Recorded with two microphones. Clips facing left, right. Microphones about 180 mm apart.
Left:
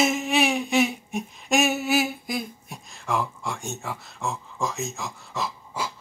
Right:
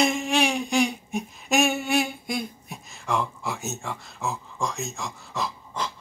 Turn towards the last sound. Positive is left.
turn(degrees=5)  # may be behind; listen again after turning